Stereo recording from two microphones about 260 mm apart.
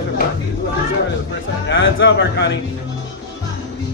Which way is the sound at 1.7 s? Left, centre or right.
Left.